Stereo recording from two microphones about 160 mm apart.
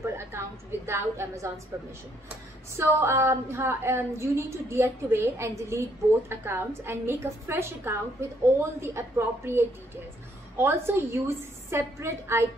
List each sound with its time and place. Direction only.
0.0 s a woman's voice: 15° right (ahead or behind)
2.8 s a woman's voice: 15° right (ahead or behind)